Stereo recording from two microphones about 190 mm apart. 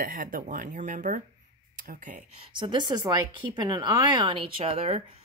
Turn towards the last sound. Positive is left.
turn(degrees=-35)  # may be behind; listen again after turning